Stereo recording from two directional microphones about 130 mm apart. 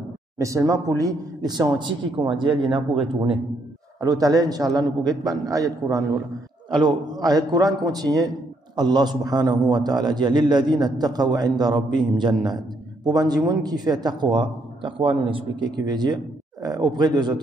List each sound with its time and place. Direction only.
0.4 s a man's voice: 25° right (ahead or behind)
4.0 s a man's voice: 30° right (ahead or behind)